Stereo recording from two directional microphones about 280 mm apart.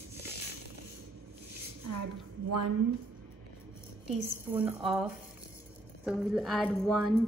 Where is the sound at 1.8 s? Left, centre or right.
Right.